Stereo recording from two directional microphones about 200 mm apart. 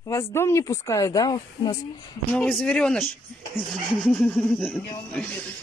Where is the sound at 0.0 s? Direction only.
15° left (ahead or behind).